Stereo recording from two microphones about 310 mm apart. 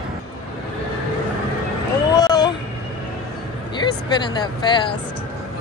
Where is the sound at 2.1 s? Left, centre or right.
Centre.